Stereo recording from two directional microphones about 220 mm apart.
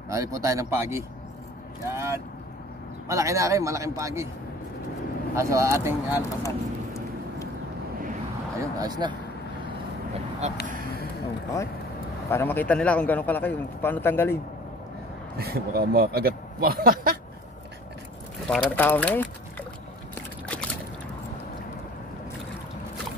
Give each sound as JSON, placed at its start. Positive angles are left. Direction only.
{"t": 0.1, "sound": "a man's voice", "side_deg": -15}
{"t": 5.3, "sound": "a man's voice", "side_deg": -15}
{"t": 6.4, "sound": "a sound", "side_deg": 15}
{"t": 8.5, "sound": "a man's voice", "side_deg": -15}
{"t": 10.4, "sound": "speech", "side_deg": -30}
{"t": 12.3, "sound": "a man's voice", "side_deg": 10}
{"t": 15.3, "sound": "speech", "side_deg": -45}
{"t": 18.5, "sound": "a man's voice", "side_deg": 5}